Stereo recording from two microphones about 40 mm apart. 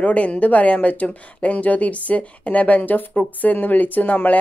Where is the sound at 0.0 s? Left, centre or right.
Left.